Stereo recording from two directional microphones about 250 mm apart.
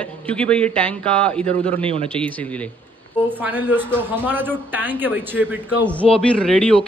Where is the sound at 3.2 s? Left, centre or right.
Centre.